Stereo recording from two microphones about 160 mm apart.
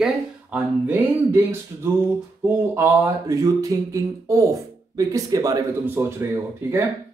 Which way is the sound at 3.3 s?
20° right (ahead or behind).